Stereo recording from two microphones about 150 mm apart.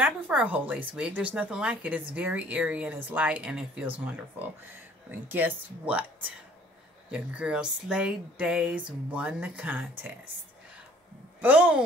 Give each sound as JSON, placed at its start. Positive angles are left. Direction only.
{"t": 0.0, "sound": "speech", "side_deg": -10}
{"t": 5.3, "sound": "speech", "side_deg": -10}
{"t": 11.4, "sound": "speech", "side_deg": -10}